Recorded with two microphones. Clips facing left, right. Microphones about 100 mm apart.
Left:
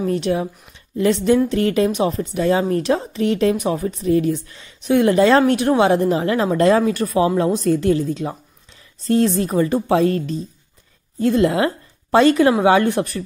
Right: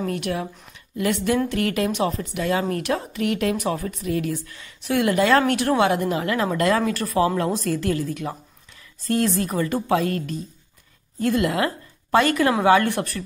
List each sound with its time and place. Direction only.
0.1 s a woman's voice: 25° left (ahead or behind)